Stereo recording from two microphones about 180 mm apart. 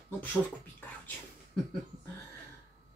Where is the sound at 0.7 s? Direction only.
10° left (ahead or behind).